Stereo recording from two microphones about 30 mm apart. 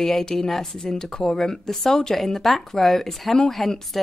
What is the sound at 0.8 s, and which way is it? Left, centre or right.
A woman's voice, left.